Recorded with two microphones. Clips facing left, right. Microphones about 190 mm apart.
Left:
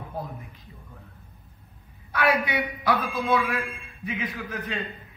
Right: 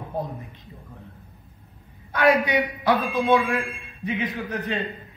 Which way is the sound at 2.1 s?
25° right (ahead or behind).